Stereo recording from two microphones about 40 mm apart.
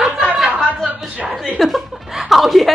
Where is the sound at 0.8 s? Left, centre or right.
Right.